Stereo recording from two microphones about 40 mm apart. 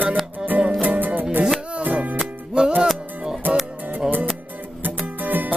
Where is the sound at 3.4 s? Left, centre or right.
Right.